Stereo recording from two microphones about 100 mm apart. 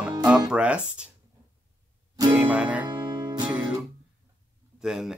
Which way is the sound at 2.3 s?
15° right (ahead or behind).